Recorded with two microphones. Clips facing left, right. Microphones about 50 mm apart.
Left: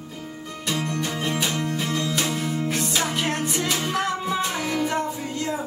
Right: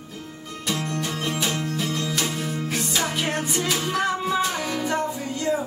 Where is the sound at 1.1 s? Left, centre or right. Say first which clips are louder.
Left 1 dB; centre.